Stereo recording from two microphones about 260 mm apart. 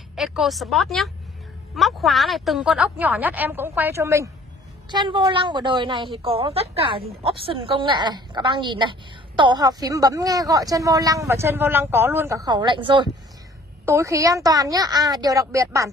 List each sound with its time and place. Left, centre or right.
0.1 s a woman's voice: centre